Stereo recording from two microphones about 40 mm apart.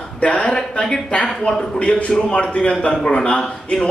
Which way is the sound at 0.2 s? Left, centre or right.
Left.